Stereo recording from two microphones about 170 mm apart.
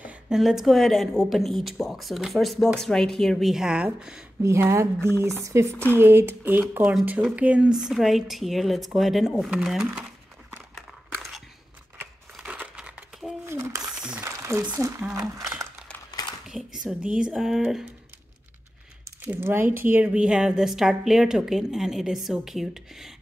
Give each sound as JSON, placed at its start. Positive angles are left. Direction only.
{"t": 0.0, "sound": "a woman's voice", "side_deg": -5}
{"t": 4.4, "sound": "a woman's voice", "side_deg": -15}
{"t": 11.1, "sound": "biting", "side_deg": 0}
{"t": 12.0, "sound": "crumpling", "side_deg": -5}
{"t": 14.2, "sound": "speech", "side_deg": -15}
{"t": 16.1, "sound": "a sound", "side_deg": 25}
{"t": 16.4, "sound": "a woman's voice", "side_deg": 0}
{"t": 19.2, "sound": "a woman's voice", "side_deg": -15}